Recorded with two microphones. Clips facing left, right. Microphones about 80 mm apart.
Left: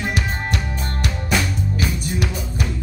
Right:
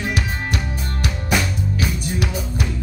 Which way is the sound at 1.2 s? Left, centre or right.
Centre.